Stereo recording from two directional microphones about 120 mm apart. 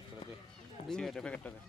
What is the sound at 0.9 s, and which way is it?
Speech, 5° left (ahead or behind).